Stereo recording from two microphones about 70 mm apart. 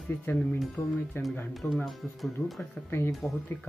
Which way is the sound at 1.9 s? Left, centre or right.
Centre.